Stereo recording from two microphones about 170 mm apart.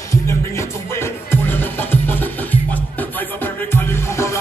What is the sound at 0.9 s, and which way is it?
Music, 10° left (ahead or behind).